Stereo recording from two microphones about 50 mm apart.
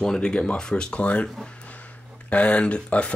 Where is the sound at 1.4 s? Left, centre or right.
Left.